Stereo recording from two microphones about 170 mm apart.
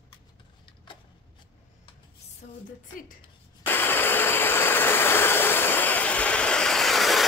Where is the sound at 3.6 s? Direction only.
10° left (ahead or behind).